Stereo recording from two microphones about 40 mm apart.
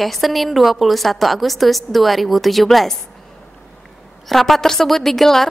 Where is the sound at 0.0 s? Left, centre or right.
Centre.